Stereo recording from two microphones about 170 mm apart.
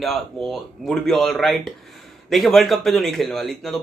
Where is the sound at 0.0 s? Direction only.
Centre (ahead or behind).